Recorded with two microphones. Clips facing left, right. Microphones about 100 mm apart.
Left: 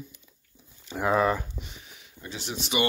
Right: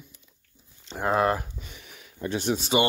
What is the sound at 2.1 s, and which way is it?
Speech, 55° right (ahead or behind).